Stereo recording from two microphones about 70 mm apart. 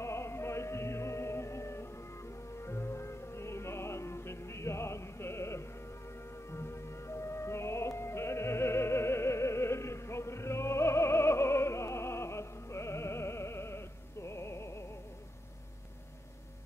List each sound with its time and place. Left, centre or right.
0.0 s music: left